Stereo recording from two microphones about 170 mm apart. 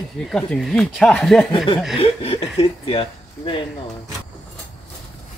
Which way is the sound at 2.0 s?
35° left (ahead or behind).